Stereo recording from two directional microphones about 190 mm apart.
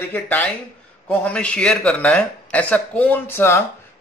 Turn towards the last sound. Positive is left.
turn(degrees=10)  # may be behind; listen again after turning